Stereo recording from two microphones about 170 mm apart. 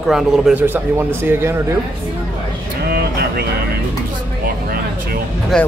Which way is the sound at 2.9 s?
65° right (ahead or behind).